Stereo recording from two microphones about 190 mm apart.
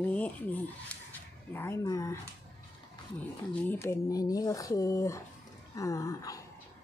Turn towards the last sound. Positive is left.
turn(degrees=15)  # may be behind; listen again after turning